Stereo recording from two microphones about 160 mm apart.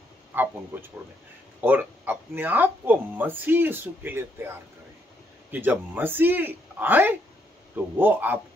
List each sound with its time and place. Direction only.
0.3 s speech: 15° right (ahead or behind)
1.6 s speech: 10° right (ahead or behind)
5.5 s speech: 10° right (ahead or behind)